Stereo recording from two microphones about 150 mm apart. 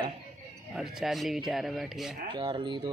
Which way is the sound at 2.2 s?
35° right (ahead or behind).